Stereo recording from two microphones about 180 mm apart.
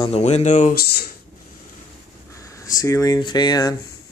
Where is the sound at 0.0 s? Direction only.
35° left (ahead or behind).